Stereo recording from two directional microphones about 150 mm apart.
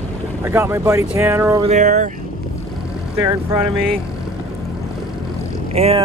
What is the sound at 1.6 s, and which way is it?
Speech, 55° right (ahead or behind).